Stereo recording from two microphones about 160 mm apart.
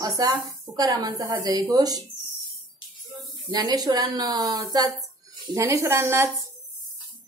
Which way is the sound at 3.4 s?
25° right (ahead or behind).